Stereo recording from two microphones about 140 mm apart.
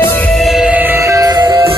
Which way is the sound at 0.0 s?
15° left (ahead or behind).